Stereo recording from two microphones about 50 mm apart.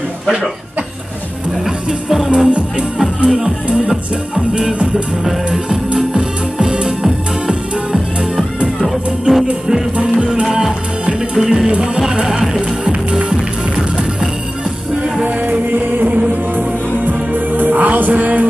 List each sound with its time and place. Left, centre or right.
1.6 s music: centre
3.3 s speech: centre
5.2 s music: centre
9.3 s speech: centre
11.1 s music: centre
11.7 s speech: centre
13.3 s music: centre
15.2 s music: right
15.6 s music: right